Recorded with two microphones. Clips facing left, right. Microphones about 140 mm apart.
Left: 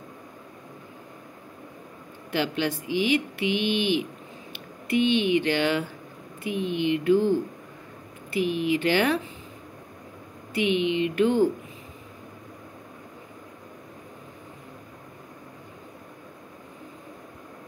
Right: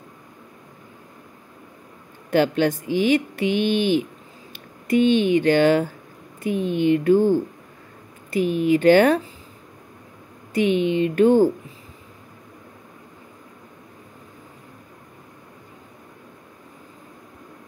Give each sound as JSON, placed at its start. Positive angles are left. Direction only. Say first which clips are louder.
{"t": 2.3, "sound": "speech", "louder": "right 8 dB", "side_deg": -45}
{"t": 10.5, "sound": "speech", "louder": "right 4 dB", "side_deg": -45}